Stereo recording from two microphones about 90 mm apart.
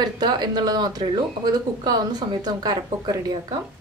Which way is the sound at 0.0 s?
50° right (ahead or behind).